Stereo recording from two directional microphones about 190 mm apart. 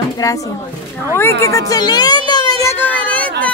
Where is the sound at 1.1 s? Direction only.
15° left (ahead or behind).